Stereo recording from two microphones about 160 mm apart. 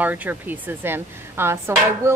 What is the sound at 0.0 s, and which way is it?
A woman's voice, 10° right (ahead or behind).